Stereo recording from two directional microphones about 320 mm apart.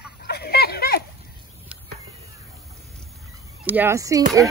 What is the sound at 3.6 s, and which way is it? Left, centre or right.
Speech, centre.